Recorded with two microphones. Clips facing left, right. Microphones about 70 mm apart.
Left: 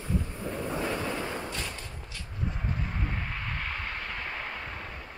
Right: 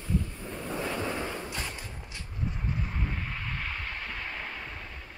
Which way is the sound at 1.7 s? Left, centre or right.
Centre.